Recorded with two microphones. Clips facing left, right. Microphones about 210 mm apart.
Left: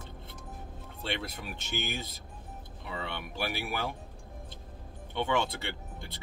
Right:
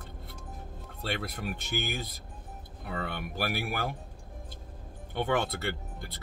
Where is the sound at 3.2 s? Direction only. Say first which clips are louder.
Right 2 dB; 50° right (ahead or behind).